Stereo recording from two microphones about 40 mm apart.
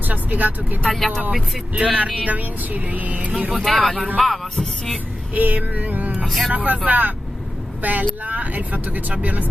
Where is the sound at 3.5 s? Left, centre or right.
Centre.